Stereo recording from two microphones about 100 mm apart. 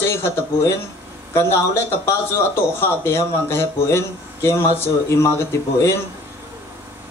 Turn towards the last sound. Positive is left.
turn(degrees=30)  # may be behind; listen again after turning